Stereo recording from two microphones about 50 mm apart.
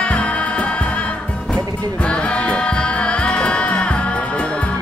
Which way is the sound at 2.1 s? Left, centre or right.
Left.